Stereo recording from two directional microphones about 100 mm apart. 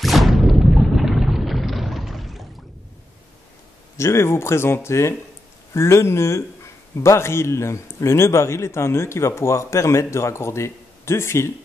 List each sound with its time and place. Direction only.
0.0 s boat: centre (ahead or behind)
4.0 s speech: 25° left (ahead or behind)